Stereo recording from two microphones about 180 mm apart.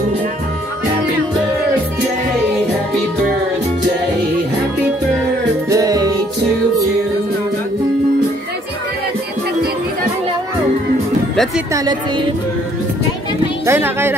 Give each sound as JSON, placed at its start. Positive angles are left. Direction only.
{"t": 5.7, "sound": "music", "side_deg": -20}
{"t": 11.7, "sound": "speech", "side_deg": -20}
{"t": 13.7, "sound": "speech", "side_deg": -15}